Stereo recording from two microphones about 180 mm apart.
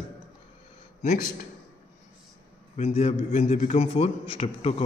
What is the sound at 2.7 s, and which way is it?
Speech, 35° left (ahead or behind).